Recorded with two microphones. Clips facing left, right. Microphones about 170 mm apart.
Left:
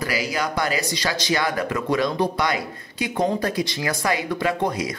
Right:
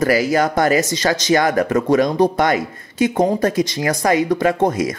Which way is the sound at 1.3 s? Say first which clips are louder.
Right 8 dB; 45° right (ahead or behind).